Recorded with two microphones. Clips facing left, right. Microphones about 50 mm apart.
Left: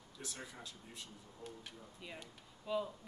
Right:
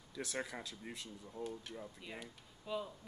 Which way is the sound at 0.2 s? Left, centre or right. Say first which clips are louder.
Right 7 dB; right.